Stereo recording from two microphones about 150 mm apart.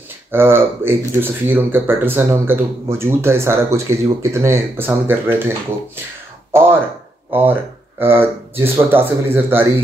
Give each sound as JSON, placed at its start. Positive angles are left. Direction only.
{"t": 0.3, "sound": "speech", "side_deg": -15}
{"t": 6.5, "sound": "speech", "side_deg": -15}